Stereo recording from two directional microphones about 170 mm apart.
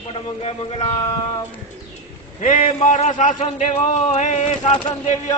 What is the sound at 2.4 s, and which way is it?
A man's voice, 45° left (ahead or behind).